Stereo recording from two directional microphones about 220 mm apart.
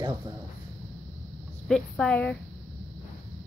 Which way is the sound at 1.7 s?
5° left (ahead or behind).